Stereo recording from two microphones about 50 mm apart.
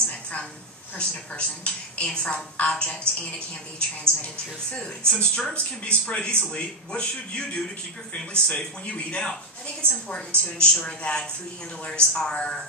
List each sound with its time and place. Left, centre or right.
0.1 s a sound: left
0.9 s a woman's voice: left
4.7 s a woman's voice: centre